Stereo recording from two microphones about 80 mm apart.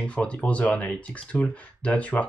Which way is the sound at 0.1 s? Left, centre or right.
Centre.